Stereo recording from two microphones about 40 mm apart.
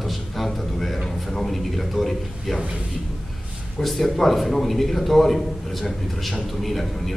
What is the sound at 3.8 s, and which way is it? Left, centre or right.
A man's voice, centre.